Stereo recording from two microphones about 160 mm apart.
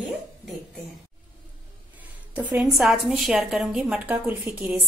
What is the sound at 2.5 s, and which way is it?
A woman's voice, centre (ahead or behind).